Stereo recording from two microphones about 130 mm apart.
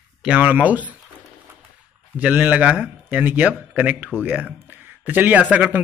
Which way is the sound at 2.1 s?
10° right (ahead or behind).